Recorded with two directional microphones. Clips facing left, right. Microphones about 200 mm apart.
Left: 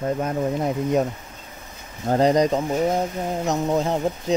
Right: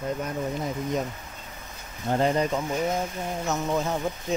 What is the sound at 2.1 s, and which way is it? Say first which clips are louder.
Speech: left 6 dB; 40° left (ahead or behind).